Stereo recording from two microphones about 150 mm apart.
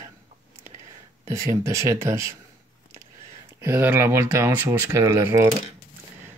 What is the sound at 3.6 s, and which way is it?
Speech, 15° right (ahead or behind).